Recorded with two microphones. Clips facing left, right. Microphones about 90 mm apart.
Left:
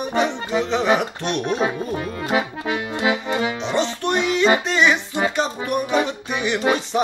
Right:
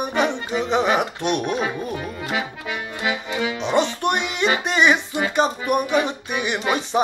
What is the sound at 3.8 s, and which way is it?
Music, 10° right (ahead or behind).